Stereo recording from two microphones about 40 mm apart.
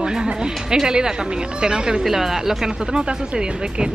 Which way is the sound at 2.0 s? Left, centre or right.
Centre.